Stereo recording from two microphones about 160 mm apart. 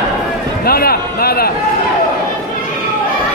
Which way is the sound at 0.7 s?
70° left (ahead or behind).